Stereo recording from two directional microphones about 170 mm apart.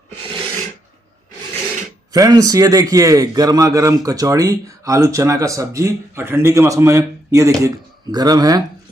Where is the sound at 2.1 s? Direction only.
20° right (ahead or behind).